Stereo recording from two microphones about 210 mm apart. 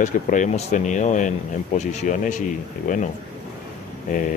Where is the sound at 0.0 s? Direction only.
35° left (ahead or behind).